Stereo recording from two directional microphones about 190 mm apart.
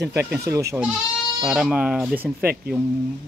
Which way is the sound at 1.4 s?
5° right (ahead or behind).